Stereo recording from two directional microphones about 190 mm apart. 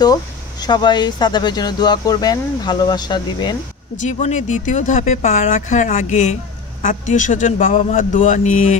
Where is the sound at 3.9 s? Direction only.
40° left (ahead or behind).